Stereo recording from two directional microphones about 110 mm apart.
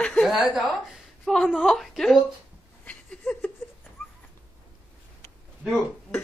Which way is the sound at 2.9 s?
10° left (ahead or behind).